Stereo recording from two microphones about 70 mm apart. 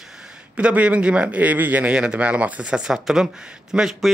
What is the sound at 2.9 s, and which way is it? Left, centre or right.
A man's voice, centre.